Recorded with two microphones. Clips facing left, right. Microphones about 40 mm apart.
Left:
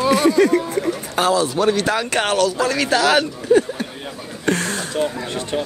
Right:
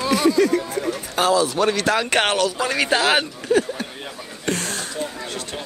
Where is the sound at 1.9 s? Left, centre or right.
Right.